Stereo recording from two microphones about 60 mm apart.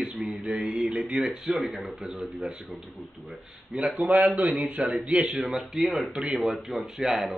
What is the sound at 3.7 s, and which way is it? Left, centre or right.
Speech, centre.